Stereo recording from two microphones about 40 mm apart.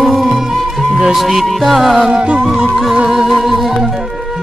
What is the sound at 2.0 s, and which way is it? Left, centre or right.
Music, right.